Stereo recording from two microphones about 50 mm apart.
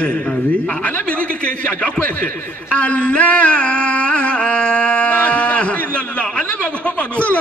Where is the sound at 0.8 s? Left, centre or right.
Left.